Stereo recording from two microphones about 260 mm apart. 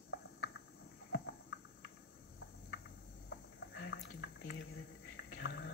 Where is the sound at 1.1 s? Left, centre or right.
Left.